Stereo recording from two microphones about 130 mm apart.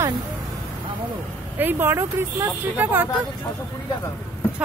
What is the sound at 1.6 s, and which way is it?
Speech, 15° right (ahead or behind).